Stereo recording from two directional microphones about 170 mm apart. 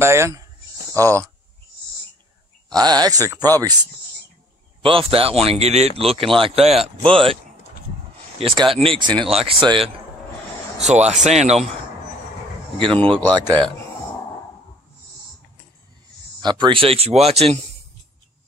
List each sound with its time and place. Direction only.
0.0 s speech: 15° right (ahead or behind)
2.7 s speech: 25° right (ahead or behind)
4.8 s a man's voice: 35° right (ahead or behind)
8.4 s a man's voice: 35° right (ahead or behind)
10.8 s a man's voice: 40° right (ahead or behind)
12.7 s speech: 30° right (ahead or behind)
16.3 s a man's voice: 25° right (ahead or behind)